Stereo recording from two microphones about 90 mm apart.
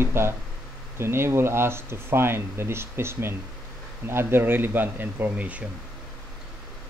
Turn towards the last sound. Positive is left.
turn(degrees=-15)  # may be behind; listen again after turning